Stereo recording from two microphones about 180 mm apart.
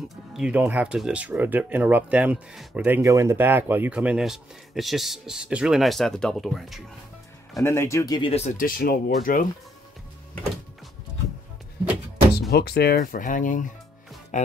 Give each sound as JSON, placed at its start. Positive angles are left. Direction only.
{"t": 0.1, "sound": "speech", "side_deg": -5}
{"t": 7.6, "sound": "speech", "side_deg": 15}
{"t": 8.3, "sound": "speech", "side_deg": 35}
{"t": 12.4, "sound": "speech", "side_deg": 65}